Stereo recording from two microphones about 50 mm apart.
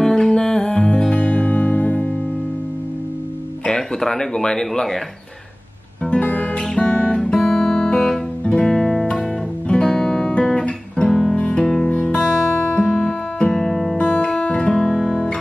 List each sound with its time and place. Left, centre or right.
0.0 s music: centre; by 2.0 s left
3.6 s speech: centre
6.0 s music: left
7.2 s guitar: centre
11.1 s guitar: centre
11.3 s music: left
11.6 s music: centre
11.9 s guitar: left
13.9 s guitar: left
15.0 s guitar: centre